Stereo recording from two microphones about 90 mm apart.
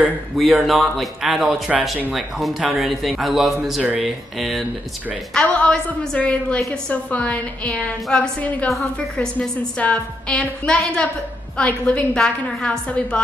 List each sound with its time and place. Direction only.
0.4 s a man's voice: centre (ahead or behind)
5.3 s a woman's voice: 10° left (ahead or behind)
8.6 s a woman's voice: 5° left (ahead or behind)